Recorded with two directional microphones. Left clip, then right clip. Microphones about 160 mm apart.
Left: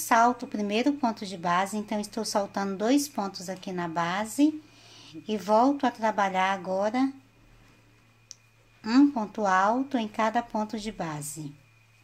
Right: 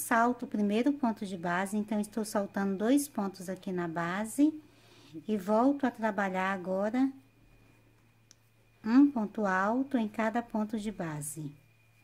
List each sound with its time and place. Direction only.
0.4 s a woman's voice: 45° right (ahead or behind)
8.3 s clicking: 45° right (ahead or behind)
8.8 s a woman's voice: 45° right (ahead or behind)